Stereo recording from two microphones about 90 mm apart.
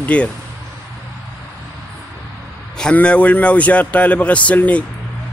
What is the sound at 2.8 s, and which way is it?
Speech, 10° left (ahead or behind).